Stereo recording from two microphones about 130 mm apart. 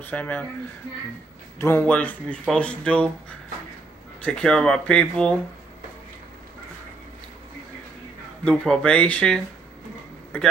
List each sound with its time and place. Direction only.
0.0 s speech: 10° left (ahead or behind)
1.6 s speech: 15° left (ahead or behind)
4.2 s speech: 5° left (ahead or behind)
8.5 s speech: 5° left (ahead or behind)